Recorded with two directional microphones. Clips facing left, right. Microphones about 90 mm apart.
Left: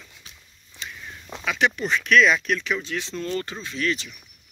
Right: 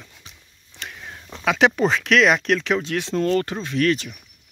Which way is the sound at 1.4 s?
90° right.